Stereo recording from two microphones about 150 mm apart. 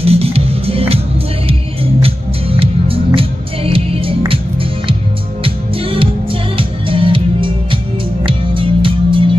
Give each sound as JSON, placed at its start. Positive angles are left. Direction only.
{"t": 0.0, "sound": "music", "side_deg": -40}